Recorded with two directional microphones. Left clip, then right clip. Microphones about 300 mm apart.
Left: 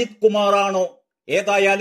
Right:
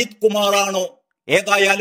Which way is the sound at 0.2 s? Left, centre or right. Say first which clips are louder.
Even; centre.